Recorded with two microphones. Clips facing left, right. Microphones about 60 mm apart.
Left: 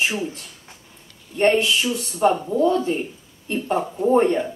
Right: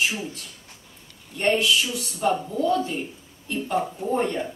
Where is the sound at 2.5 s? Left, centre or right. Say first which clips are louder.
Left 4 dB; left.